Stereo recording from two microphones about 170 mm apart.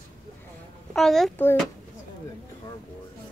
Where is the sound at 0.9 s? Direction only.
Centre (ahead or behind).